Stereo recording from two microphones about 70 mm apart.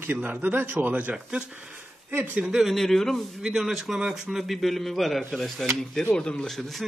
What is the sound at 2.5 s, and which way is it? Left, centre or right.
Speech, centre.